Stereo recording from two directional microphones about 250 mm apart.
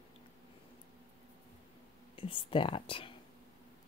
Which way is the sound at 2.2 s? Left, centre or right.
Left.